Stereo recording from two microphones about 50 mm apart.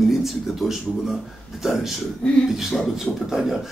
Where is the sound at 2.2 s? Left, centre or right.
Centre.